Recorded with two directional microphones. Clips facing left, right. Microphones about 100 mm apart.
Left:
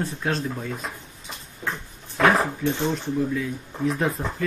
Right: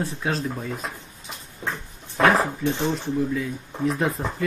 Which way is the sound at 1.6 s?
15° right (ahead or behind).